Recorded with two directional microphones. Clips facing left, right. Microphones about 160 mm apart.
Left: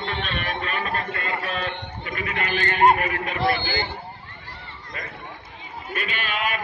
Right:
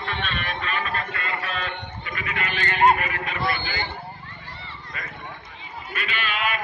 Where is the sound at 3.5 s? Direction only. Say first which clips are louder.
Left 6 dB; 40° left (ahead or behind).